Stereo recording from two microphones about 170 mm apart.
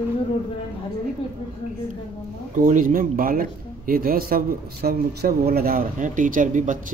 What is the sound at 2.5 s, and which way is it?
Speech, 50° right (ahead or behind).